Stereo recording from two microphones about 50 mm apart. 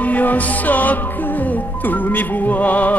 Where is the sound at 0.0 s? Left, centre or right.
Left.